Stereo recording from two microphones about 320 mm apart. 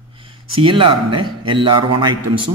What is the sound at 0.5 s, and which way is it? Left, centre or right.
Speech, centre.